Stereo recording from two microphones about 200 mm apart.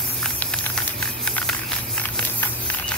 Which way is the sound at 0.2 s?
5° left (ahead or behind).